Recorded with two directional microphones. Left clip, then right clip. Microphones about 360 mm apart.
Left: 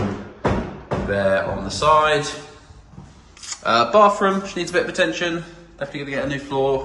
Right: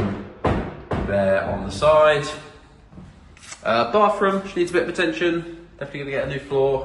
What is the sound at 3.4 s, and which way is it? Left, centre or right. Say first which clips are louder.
A man's voice: left 3 dB; centre.